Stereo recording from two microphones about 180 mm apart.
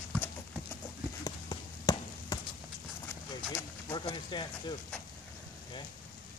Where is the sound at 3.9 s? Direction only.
25° left (ahead or behind).